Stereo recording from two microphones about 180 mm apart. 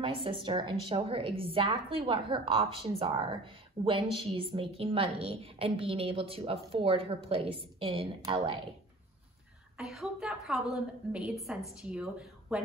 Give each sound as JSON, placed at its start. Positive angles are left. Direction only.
{"t": 0.0, "sound": "a woman's voice", "side_deg": -30}
{"t": 9.8, "sound": "a woman's voice", "side_deg": 0}